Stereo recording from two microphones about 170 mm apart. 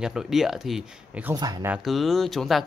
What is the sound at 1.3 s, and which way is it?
Speech, 20° right (ahead or behind).